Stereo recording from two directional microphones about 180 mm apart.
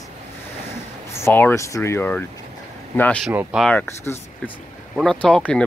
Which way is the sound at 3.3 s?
10° right (ahead or behind).